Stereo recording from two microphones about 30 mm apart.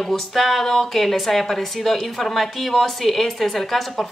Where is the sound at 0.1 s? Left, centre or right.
Centre.